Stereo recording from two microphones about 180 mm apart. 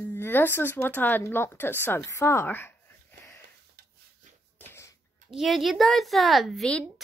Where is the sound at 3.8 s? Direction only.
60° right (ahead or behind).